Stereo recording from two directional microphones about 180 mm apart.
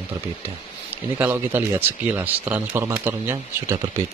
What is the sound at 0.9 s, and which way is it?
Speech, 10° right (ahead or behind).